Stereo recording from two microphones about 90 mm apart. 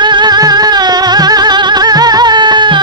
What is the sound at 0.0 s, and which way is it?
Music, 55° right (ahead or behind).